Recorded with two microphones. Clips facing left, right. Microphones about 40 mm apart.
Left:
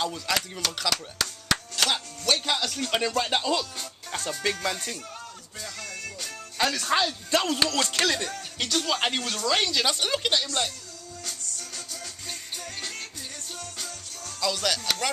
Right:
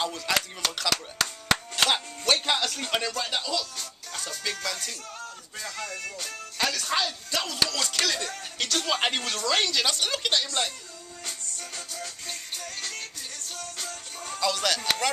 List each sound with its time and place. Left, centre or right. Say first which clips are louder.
0.0 s a sound: even; centre
1.1 s speech: right 2 dB; centre
3.1 s speech: left 4 dB; left
5.6 s music: right 2 dB; centre
6.6 s speech: left 3 dB; centre
7.2 s music: left 6 dB; left
7.7 s speech: left 3 dB; left
8.2 s speech: left 1 dB; centre
11.2 s music: right 1 dB; centre
12.5 s music: left 1 dB; centre
13.6 s music: right 3 dB; centre
14.4 s a sound: right 1 dB; centre